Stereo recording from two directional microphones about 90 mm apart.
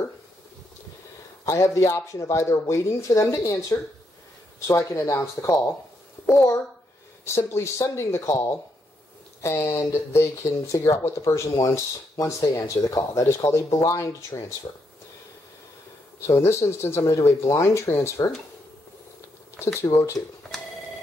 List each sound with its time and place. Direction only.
1.4 s speech: 35° left (ahead or behind)
16.2 s speech: 30° left (ahead or behind)
19.6 s speech: 30° left (ahead or behind)